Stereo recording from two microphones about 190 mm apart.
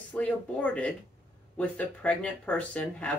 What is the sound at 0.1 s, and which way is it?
Speech, 5° left (ahead or behind).